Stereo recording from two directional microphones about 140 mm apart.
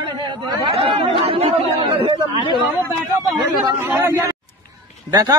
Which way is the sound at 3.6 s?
15° right (ahead or behind).